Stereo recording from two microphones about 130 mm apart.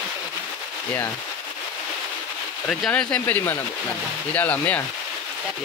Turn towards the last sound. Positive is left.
turn(degrees=10)  # may be behind; listen again after turning